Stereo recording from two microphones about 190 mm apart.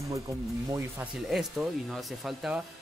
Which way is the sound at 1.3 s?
Centre (ahead or behind).